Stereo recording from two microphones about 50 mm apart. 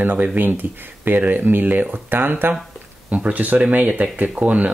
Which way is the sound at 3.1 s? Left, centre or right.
Right.